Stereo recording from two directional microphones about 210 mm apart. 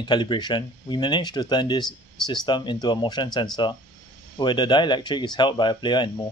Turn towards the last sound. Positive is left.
turn(degrees=20)  # may be behind; listen again after turning